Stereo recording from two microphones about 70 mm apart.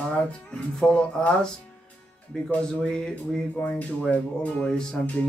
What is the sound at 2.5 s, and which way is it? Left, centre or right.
Speech, centre.